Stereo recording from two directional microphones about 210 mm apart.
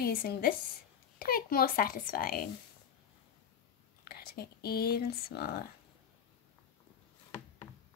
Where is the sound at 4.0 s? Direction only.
45° left (ahead or behind).